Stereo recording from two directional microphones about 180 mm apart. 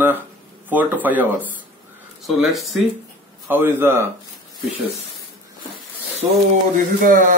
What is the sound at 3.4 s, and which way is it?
Speech, 10° right (ahead or behind).